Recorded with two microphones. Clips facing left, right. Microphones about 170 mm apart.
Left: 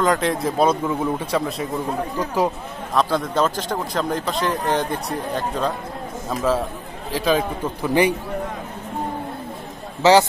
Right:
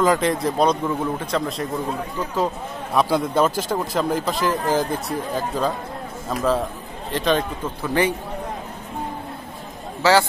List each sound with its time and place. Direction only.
0.0 s a man's voice: centre (ahead or behind)
2.9 s a man's voice: 10° right (ahead or behind)
7.6 s a man's voice: 15° left (ahead or behind)
10.0 s a man's voice: 20° left (ahead or behind)